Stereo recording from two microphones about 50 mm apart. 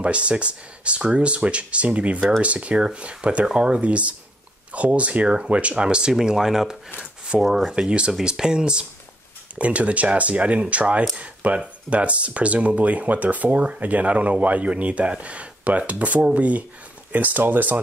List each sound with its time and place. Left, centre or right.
0.0 s speech: right
7.0 s a sound: centre
7.4 s speech: centre
7.7 s speech: centre; by 17.7 s right